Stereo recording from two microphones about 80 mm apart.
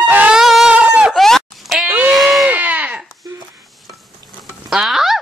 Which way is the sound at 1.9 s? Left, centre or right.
Centre.